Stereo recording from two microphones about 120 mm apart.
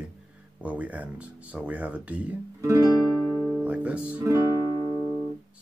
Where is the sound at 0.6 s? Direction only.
10° right (ahead or behind).